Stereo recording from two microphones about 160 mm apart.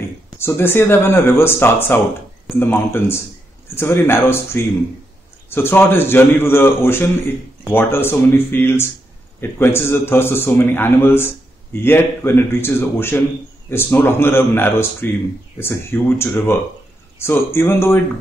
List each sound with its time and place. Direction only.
0.4 s a man's voice: 15° left (ahead or behind)